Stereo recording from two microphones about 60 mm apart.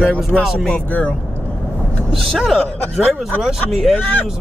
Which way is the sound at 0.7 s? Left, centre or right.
Left.